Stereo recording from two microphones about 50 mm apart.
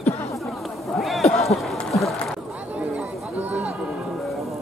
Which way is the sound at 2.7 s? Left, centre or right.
Right.